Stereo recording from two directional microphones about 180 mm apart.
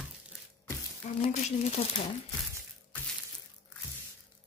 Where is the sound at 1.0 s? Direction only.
40° left (ahead or behind).